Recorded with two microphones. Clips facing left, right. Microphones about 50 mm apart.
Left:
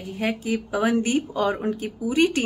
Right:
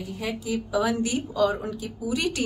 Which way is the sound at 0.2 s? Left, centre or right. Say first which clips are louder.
Left 5 dB; left.